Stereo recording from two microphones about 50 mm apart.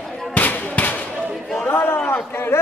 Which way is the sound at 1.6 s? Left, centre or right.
Left.